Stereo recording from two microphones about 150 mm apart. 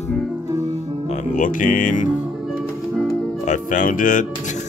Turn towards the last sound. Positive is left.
turn(degrees=60)  # may be behind; listen again after turning